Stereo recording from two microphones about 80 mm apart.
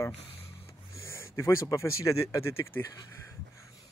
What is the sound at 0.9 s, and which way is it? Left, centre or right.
Speech, left.